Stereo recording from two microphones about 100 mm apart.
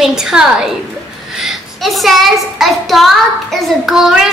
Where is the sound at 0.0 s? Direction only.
5° right (ahead or behind).